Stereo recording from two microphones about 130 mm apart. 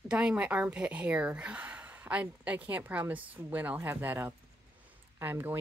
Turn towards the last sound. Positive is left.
turn(degrees=-15)  # may be behind; listen again after turning